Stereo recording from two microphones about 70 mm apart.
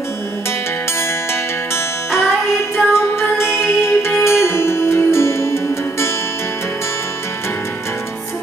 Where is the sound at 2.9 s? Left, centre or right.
Left.